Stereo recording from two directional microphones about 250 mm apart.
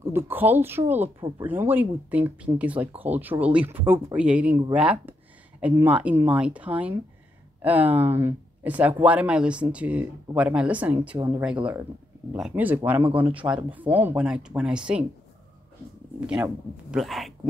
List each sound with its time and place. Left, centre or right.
0.0 s speech: centre
16.2 s speech: centre